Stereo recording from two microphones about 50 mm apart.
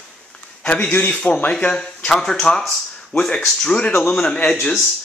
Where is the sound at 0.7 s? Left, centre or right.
Left.